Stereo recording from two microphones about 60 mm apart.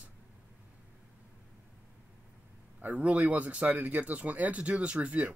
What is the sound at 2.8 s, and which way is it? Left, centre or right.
Speech, right.